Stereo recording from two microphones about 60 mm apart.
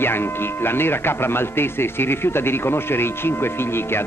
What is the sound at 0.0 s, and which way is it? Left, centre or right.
Speech, left.